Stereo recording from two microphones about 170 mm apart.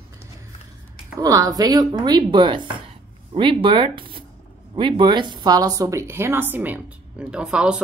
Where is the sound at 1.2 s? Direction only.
20° right (ahead or behind).